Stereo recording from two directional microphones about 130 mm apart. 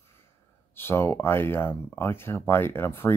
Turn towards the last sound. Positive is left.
turn(degrees=20)  # may be behind; listen again after turning